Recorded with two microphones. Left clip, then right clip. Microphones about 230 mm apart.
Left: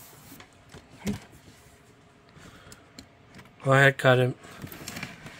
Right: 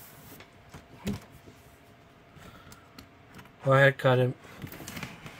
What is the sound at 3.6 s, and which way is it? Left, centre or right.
Speech, left.